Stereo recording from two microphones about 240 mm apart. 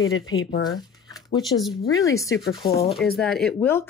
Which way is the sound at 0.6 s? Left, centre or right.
Centre.